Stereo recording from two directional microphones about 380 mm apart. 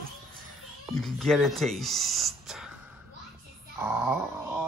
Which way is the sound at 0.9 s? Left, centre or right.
Centre.